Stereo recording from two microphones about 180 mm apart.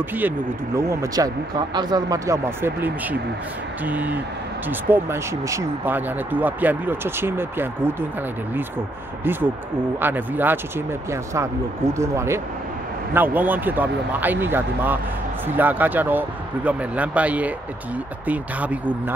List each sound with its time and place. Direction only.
0.7 s speech: 15° right (ahead or behind)
9.2 s speech: 10° right (ahead or behind)